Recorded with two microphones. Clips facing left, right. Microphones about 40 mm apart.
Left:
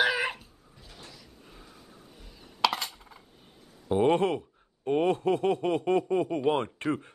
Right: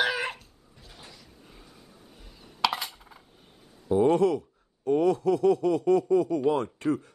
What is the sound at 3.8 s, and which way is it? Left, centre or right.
Speech, left.